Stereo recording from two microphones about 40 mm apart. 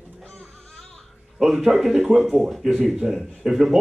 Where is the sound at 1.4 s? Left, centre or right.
Centre.